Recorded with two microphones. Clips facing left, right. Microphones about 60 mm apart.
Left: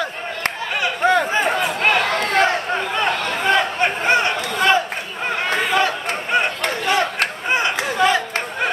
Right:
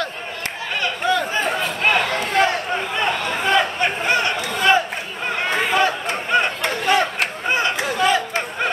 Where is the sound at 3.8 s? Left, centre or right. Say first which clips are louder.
Left 2 dB; left.